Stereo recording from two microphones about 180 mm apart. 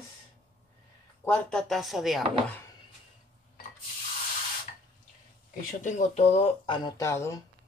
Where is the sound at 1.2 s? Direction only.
5° left (ahead or behind).